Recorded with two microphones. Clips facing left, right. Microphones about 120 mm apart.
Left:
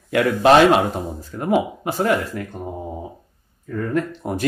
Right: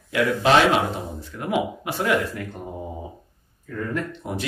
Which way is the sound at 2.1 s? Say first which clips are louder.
Even; centre (ahead or behind).